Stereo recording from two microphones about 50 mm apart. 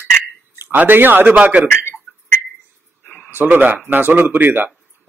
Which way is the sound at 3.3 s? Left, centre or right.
Right.